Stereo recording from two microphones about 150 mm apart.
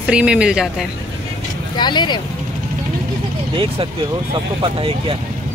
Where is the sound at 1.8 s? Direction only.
30° left (ahead or behind).